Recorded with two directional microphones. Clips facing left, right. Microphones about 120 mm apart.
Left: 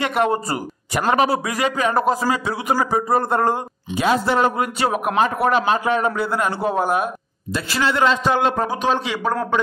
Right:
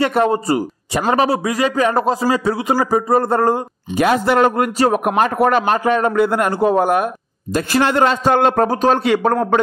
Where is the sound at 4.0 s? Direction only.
55° right (ahead or behind).